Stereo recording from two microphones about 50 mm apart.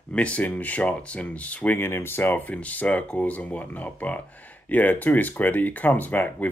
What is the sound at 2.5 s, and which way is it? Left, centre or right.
Speech, left.